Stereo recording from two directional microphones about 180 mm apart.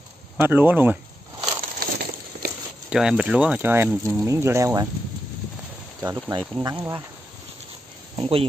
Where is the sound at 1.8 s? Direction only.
55° right (ahead or behind).